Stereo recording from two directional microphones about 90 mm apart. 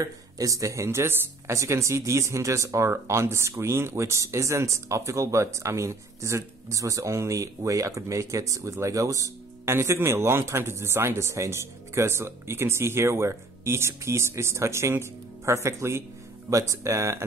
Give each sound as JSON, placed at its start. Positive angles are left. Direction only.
{"t": 0.0, "sound": "speech", "side_deg": -40}